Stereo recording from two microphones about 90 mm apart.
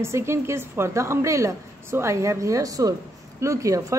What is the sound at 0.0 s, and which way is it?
A woman's voice, 30° right (ahead or behind).